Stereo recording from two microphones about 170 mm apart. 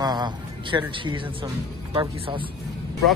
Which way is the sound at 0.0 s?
25° right (ahead or behind).